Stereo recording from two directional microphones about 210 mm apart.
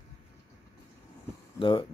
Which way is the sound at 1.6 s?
20° left (ahead or behind).